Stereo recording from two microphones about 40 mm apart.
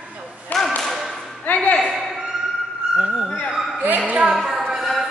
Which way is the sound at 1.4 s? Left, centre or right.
Left.